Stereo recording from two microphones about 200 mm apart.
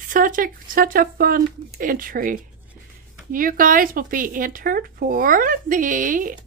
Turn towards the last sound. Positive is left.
turn(degrees=-40)  # may be behind; listen again after turning